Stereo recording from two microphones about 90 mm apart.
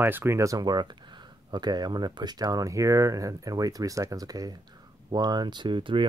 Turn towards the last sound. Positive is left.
turn(degrees=-65)  # may be behind; listen again after turning